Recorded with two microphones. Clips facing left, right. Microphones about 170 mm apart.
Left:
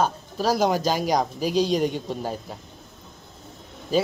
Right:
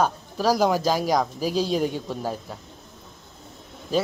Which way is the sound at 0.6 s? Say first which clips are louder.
Right 1 dB; centre (ahead or behind).